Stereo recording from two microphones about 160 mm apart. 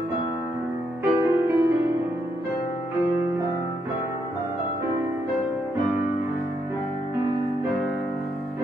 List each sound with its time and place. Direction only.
1.0 s music: 15° right (ahead or behind)